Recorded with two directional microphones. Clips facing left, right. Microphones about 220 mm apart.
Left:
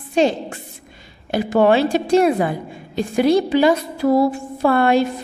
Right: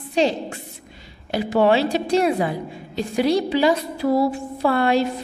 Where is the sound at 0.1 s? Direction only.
50° left (ahead or behind).